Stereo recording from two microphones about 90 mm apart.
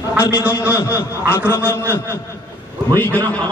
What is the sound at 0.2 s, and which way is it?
A man's voice, 30° left (ahead or behind).